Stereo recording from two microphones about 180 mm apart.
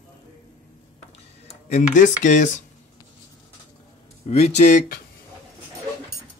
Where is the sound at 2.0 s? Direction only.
45° left (ahead or behind).